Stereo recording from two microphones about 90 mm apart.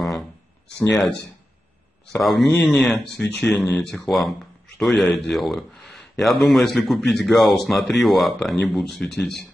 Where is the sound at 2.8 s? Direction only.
5° left (ahead or behind).